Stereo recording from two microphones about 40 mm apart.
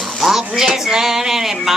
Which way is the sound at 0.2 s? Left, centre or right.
Centre.